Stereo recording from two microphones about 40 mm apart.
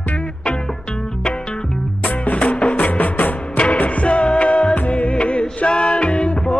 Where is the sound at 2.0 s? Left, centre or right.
Left.